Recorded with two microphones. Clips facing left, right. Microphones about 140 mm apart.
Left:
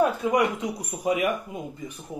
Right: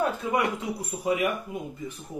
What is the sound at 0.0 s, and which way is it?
Speech, 15° left (ahead or behind).